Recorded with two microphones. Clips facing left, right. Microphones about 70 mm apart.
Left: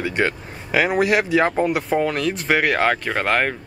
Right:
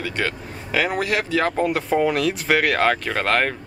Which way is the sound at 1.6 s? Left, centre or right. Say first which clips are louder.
Even; centre.